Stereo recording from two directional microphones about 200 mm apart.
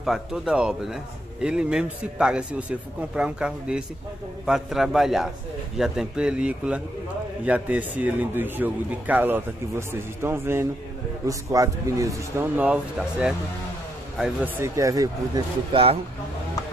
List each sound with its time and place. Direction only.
0.0 s a man's voice: centre (ahead or behind); by 16.0 s 25° right (ahead or behind)